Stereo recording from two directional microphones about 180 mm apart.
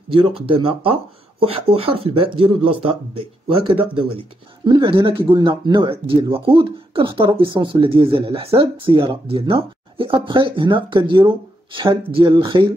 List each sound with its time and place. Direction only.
0.1 s speech: 30° right (ahead or behind)